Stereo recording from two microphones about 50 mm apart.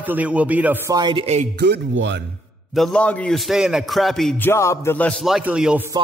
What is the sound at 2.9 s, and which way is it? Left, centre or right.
Speech, left.